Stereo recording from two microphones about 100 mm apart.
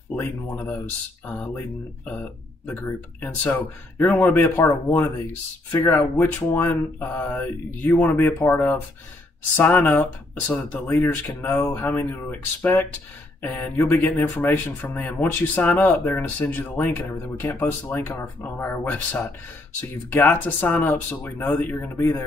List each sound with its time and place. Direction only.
0.1 s speech: 15° left (ahead or behind)